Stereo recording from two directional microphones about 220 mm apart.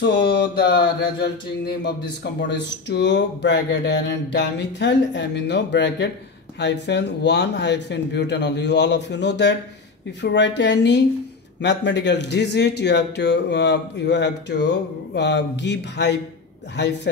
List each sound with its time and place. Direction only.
0.0 s speech: 50° left (ahead or behind)